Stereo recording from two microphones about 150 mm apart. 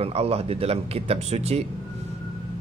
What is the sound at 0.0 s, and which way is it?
Speech, 40° right (ahead or behind).